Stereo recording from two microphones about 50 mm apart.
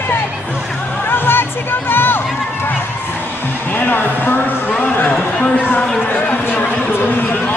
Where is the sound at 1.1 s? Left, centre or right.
Left.